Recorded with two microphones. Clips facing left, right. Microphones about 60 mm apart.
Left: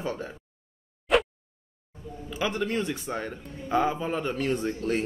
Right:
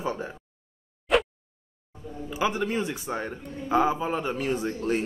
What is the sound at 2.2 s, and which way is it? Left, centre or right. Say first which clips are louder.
Speech: right 2 dB; centre.